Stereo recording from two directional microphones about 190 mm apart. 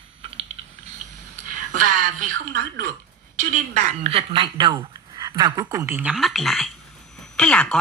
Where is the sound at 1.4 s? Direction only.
45° right (ahead or behind).